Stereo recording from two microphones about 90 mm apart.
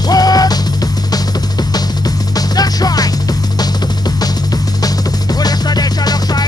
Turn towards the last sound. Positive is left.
turn(degrees=50)  # may be behind; listen again after turning